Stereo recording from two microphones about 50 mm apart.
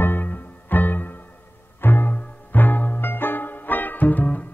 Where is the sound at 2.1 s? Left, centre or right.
Left.